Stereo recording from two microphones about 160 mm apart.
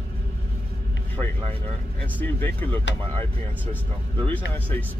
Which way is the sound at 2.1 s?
10° left (ahead or behind).